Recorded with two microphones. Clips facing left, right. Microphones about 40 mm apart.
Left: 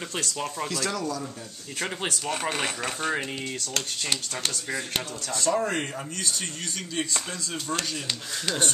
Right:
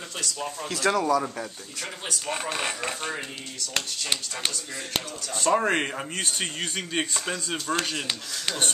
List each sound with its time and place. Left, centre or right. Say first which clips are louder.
0.8 s speech: right 7 dB; right
2.5 s speech: even; centre
3.7 s speech: right 2 dB; right
5.4 s speech: right 3 dB; right